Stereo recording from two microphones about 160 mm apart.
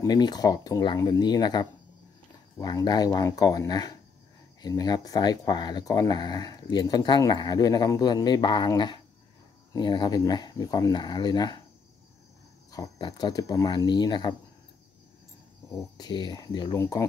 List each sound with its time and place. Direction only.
0.0 s speech: 25° left (ahead or behind)
12.7 s speech: 25° left (ahead or behind)
16.0 s speech: 25° left (ahead or behind)